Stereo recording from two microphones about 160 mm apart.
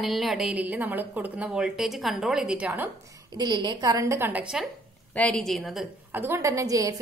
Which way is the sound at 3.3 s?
25° right (ahead or behind).